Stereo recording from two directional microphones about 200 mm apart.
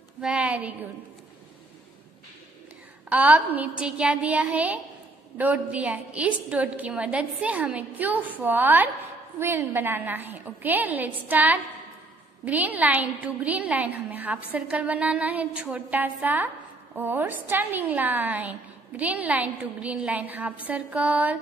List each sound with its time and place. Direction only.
0.2 s a woman's voice: 5° right (ahead or behind)
3.1 s a woman's voice: 10° right (ahead or behind)